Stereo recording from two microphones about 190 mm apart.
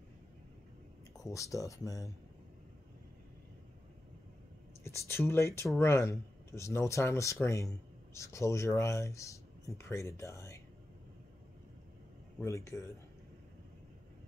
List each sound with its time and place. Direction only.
1.1 s speech: 15° left (ahead or behind)
4.8 s speech: 15° left (ahead or behind)
12.4 s speech: 15° left (ahead or behind)